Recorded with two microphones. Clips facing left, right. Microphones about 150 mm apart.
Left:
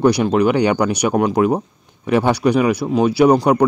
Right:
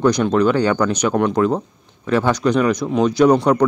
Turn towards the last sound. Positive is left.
turn(degrees=10)  # may be behind; listen again after turning